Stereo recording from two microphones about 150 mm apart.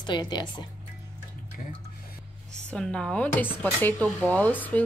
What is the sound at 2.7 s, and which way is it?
Speech, 5° left (ahead or behind).